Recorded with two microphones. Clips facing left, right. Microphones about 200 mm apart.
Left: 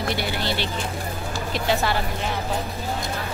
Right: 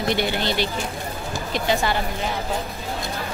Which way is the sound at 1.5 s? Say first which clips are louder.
Right 1 dB; centre (ahead or behind).